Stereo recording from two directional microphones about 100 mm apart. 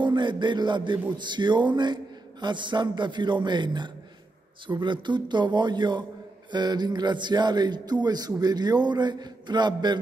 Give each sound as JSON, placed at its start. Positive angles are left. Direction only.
{"t": 0.0, "sound": "music", "side_deg": -50}
{"t": 1.1, "sound": "speech", "side_deg": -50}